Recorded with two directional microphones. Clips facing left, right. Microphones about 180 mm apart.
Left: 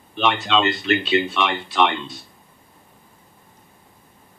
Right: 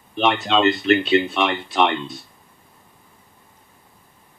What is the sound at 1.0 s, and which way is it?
Speech, 25° left (ahead or behind).